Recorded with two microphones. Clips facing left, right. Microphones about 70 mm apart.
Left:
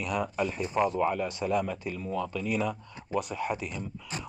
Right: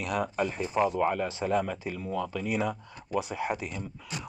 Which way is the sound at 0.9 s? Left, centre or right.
Right.